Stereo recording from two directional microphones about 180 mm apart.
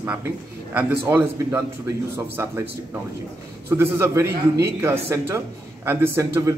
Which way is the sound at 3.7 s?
15° right (ahead or behind).